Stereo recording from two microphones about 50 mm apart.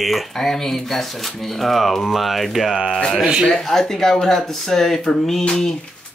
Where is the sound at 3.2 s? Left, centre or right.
Centre.